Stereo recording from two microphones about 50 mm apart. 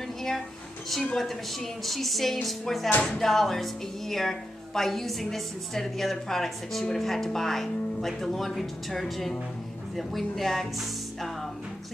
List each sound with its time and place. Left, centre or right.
1.1 s speech: centre